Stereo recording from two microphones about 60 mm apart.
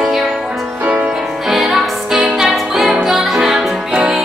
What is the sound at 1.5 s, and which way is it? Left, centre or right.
Music, centre.